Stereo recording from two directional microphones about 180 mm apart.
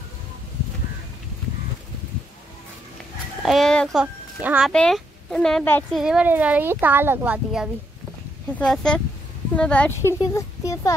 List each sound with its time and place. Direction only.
3.4 s a child's voice: centre (ahead or behind)
5.9 s a child's voice: 5° right (ahead or behind); by 11.0 s 20° left (ahead or behind)